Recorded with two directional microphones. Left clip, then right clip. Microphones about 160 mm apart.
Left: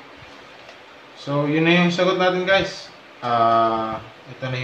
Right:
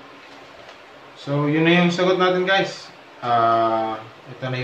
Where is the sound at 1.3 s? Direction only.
5° left (ahead or behind).